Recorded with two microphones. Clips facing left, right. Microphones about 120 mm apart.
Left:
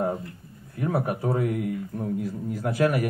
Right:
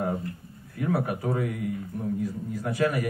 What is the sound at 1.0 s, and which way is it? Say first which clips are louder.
Speech: left 2 dB; 35° left (ahead or behind).